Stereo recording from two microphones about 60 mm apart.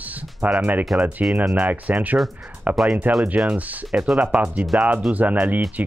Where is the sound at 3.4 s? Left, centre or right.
Centre.